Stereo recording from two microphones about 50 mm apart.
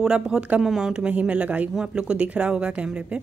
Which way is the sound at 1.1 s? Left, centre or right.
Right.